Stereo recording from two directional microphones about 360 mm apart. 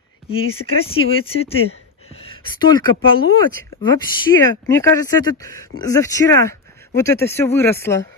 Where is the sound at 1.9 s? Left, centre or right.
Centre.